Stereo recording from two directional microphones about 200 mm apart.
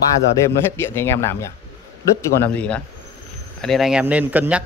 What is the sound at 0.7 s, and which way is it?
Speech, 10° left (ahead or behind).